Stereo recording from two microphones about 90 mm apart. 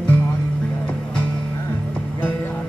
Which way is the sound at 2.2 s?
20° left (ahead or behind).